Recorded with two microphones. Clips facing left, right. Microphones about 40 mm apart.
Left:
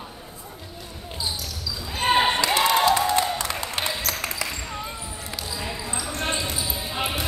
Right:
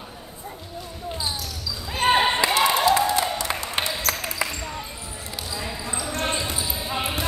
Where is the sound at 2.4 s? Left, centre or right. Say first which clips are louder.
Even; centre.